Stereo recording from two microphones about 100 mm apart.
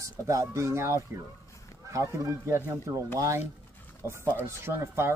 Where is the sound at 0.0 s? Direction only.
30° right (ahead or behind).